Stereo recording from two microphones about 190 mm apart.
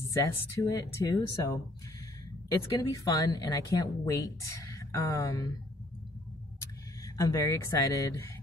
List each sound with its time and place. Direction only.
0.1 s speech: 15° left (ahead or behind)
2.8 s speech: 20° left (ahead or behind)
7.2 s speech: 15° left (ahead or behind)